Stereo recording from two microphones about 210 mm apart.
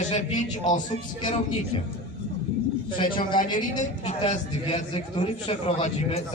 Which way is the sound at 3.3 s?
20° left (ahead or behind).